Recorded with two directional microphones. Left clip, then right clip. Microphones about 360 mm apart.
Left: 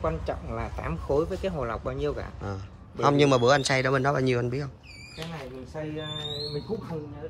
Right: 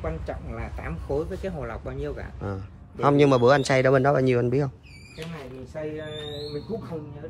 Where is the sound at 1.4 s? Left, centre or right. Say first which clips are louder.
Left 3 dB; centre.